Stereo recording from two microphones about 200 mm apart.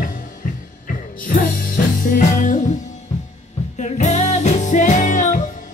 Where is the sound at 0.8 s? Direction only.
45° left (ahead or behind).